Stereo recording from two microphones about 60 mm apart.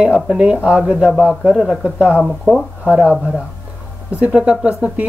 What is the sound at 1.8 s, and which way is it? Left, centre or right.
Speech, right.